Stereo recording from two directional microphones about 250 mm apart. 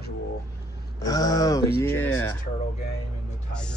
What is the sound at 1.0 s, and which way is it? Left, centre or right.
Speech, centre.